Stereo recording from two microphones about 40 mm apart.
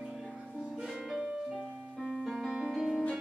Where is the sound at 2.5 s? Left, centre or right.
Centre.